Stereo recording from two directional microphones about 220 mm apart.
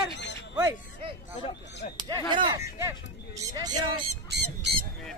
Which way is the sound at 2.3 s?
20° right (ahead or behind).